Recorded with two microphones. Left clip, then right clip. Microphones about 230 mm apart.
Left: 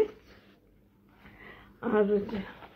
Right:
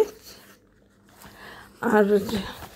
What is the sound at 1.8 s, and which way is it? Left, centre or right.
Speech, right.